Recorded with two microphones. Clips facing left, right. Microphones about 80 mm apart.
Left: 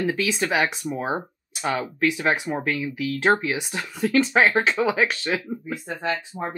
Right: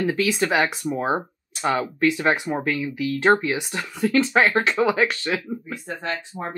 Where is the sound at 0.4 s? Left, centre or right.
Centre.